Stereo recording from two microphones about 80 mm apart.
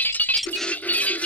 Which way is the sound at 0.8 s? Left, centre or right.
Centre.